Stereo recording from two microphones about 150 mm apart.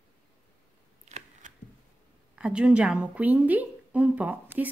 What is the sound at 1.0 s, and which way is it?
Shuffling cards, 50° right (ahead or behind).